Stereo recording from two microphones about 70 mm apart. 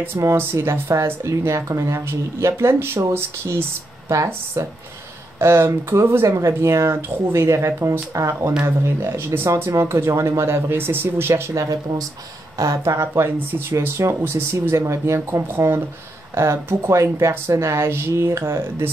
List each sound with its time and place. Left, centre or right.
0.4 s speech: right
4.6 s speech: right
5.4 s speech: right